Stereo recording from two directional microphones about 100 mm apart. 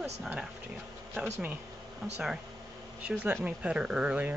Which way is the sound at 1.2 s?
15° right (ahead or behind).